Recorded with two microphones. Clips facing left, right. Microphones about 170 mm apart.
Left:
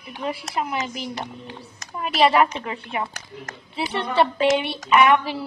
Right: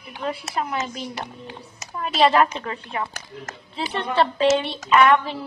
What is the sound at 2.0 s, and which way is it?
A woman's voice, 5° left (ahead or behind).